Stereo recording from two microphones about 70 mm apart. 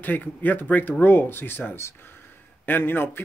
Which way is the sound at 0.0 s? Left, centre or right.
Left.